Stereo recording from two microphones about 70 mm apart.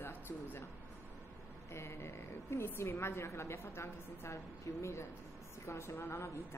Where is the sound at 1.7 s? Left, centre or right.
Left.